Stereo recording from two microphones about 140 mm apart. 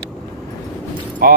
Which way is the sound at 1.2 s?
90° right.